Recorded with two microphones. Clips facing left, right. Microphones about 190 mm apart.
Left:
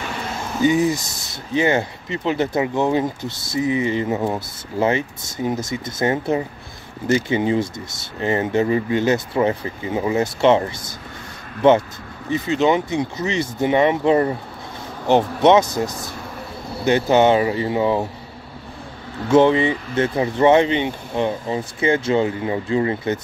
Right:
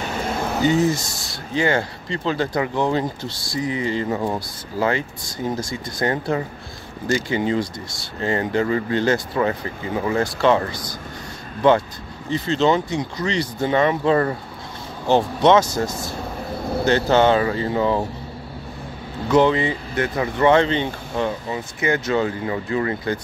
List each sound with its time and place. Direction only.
0.7 s speech: 15° left (ahead or behind)
12.3 s speech: 15° left (ahead or behind)
16.8 s speech: 15° left (ahead or behind)
19.2 s speech: 25° left (ahead or behind)
21.5 s speech: 30° left (ahead or behind)